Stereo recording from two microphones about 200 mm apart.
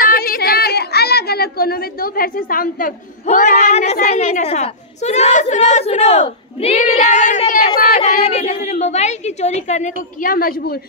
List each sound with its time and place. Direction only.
0.0 s a woman's voice: 45° left (ahead or behind)
10.2 s speech: 45° left (ahead or behind)